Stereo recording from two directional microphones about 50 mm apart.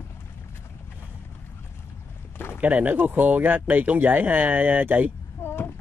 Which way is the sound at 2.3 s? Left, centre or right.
Left.